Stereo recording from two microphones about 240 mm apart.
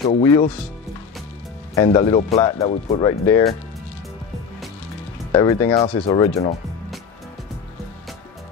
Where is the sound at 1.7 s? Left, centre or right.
Centre.